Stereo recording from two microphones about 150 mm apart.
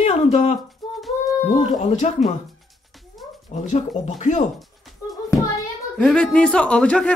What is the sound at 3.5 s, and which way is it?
Speech, 50° left (ahead or behind).